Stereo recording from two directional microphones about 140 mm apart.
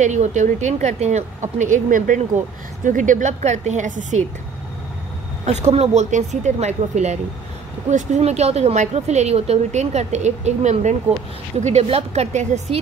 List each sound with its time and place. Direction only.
0.0 s speech: 55° right (ahead or behind)
1.6 s speech: 70° right (ahead or behind)
5.4 s a woman's voice: 55° right (ahead or behind)